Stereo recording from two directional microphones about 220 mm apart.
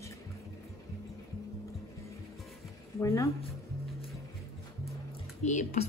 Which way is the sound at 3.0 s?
15° left (ahead or behind).